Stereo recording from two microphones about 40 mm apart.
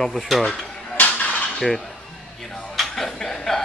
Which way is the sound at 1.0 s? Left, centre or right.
Left.